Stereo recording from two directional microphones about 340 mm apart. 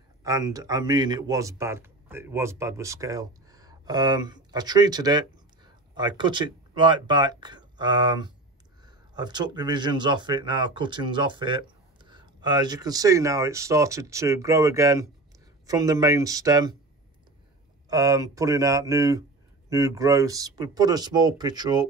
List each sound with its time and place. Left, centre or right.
0.2 s speech: centre
17.8 s speech: centre